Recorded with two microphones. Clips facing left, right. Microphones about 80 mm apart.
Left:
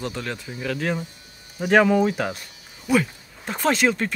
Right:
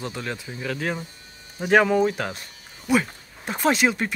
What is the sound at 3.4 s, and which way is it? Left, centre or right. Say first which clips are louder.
Speech: even; centre.